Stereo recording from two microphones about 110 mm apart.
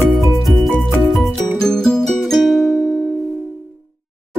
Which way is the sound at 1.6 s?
5° left (ahead or behind).